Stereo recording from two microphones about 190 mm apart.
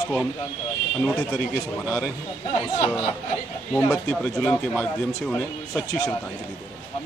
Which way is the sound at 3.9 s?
5° left (ahead or behind).